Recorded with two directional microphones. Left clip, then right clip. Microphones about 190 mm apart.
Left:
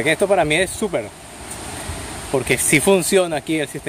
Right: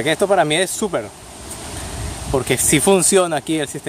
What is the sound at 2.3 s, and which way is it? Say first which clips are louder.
Speech: even; 10° right (ahead or behind).